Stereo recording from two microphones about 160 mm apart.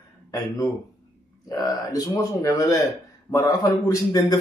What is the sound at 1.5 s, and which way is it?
A man's voice, 20° left (ahead or behind).